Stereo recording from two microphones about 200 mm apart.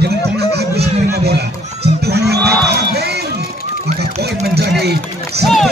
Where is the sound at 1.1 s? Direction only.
55° right (ahead or behind).